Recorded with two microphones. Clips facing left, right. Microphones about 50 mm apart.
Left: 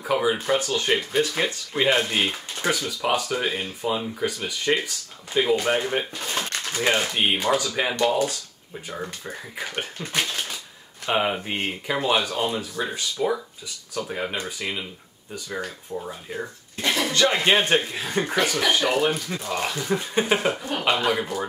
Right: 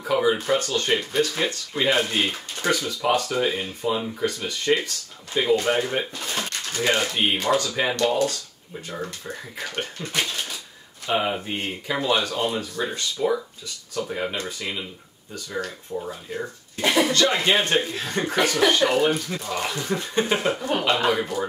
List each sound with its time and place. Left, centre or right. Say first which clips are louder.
0.0 s speech: right 1 dB; centre
2.2 s speech: right 1 dB; centre; by 11.7 s left
12.0 s speech: even; centre
16.8 s a sound: right 4 dB; centre
17.1 s speech: even; centre
20.7 s speech: right 4 dB; centre